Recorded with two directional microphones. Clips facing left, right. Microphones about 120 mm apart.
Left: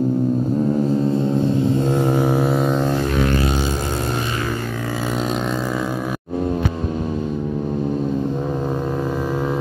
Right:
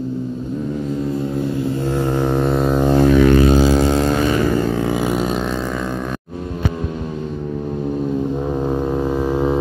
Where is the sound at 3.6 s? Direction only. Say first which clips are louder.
Right 8 dB; 90° right.